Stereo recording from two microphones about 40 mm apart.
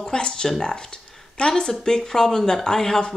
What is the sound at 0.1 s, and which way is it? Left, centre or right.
Speech, centre.